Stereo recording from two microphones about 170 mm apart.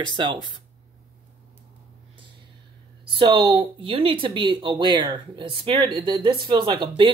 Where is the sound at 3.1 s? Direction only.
30° right (ahead or behind).